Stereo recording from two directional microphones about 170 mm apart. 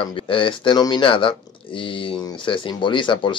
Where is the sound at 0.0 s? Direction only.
30° left (ahead or behind).